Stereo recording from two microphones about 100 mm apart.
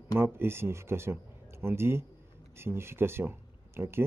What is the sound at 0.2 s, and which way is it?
Speech, 25° right (ahead or behind).